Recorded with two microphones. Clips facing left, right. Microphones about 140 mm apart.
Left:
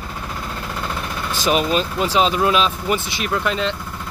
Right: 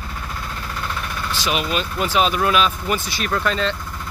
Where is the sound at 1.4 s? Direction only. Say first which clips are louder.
Left 5 dB; 35° left (ahead or behind).